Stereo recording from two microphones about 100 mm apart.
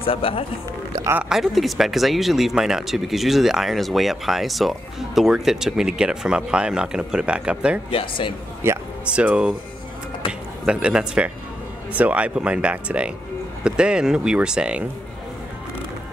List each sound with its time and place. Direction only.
0.0 s speech: 65° left (ahead or behind)
1.3 s speech: centre (ahead or behind)
7.9 s speech: 60° left (ahead or behind)
8.6 s a man's voice: 25° right (ahead or behind)
9.0 s speech: 10° right (ahead or behind)
10.6 s speech: 10° right (ahead or behind)